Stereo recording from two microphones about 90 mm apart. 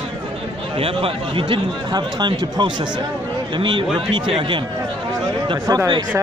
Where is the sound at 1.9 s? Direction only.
55° right (ahead or behind).